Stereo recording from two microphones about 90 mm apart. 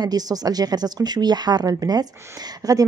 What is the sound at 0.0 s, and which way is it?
Speech, 45° right (ahead or behind).